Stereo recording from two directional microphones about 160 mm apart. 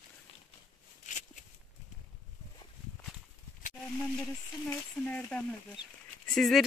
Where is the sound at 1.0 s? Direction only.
50° left (ahead or behind).